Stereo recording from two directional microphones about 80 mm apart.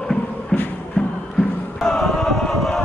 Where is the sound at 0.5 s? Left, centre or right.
Centre.